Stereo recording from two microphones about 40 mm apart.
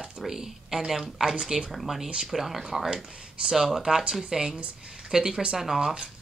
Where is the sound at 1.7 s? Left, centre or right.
Centre.